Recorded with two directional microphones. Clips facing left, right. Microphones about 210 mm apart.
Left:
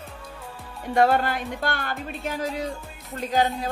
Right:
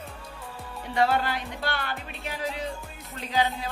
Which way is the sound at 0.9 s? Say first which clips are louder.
Left 4 dB; 50° left (ahead or behind).